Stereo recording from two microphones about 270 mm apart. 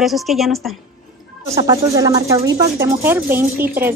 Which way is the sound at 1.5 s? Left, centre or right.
Centre.